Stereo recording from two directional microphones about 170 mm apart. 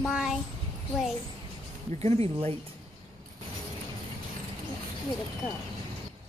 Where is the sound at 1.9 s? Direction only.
35° right (ahead or behind).